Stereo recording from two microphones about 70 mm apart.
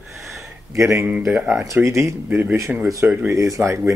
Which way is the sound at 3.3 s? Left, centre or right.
Right.